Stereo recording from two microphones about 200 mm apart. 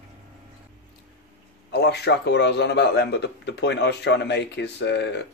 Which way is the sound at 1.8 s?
55° left (ahead or behind).